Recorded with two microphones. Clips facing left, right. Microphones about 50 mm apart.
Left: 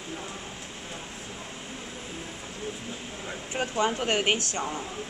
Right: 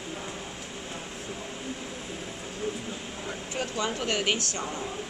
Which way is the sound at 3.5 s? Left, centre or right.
Left.